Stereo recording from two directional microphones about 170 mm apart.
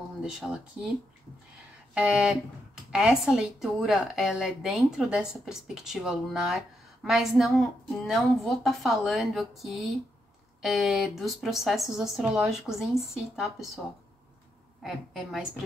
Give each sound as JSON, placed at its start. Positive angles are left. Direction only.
{"t": 0.2, "sound": "speech", "side_deg": -5}
{"t": 2.0, "sound": "speech", "side_deg": -5}
{"t": 14.8, "sound": "speech", "side_deg": -5}